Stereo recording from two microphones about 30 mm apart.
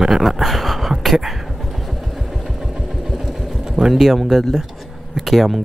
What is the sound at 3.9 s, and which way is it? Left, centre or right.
Speech, centre.